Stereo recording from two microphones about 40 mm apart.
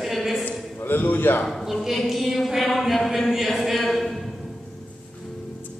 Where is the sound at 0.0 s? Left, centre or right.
Centre.